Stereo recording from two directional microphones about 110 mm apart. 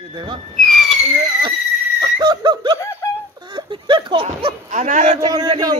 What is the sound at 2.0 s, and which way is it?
Laughter, 40° right (ahead or behind).